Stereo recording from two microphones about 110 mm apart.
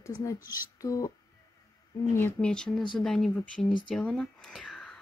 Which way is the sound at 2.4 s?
10° left (ahead or behind).